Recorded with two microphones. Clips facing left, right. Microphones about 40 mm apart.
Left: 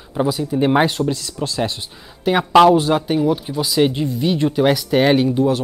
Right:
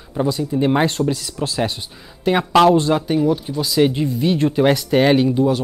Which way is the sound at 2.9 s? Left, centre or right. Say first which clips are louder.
Even; centre.